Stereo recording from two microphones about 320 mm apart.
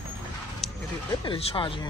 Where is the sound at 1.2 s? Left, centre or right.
Centre.